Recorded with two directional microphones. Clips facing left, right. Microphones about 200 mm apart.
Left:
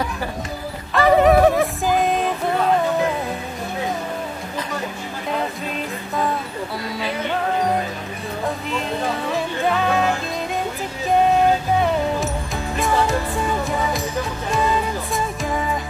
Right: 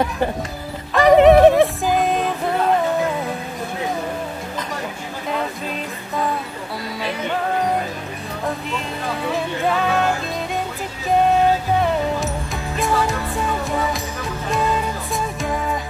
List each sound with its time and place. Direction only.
0.9 s music: 20° right (ahead or behind)
9.7 s music: centre (ahead or behind)
12.7 s music: centre (ahead or behind)